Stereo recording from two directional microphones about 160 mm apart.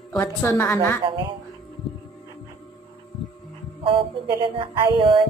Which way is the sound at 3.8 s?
35° right (ahead or behind).